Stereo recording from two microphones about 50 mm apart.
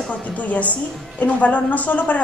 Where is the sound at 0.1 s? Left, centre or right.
Left.